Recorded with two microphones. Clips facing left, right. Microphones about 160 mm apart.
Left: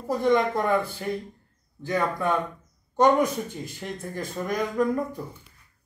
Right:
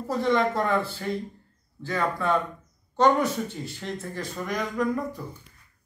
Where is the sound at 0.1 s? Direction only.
15° left (ahead or behind).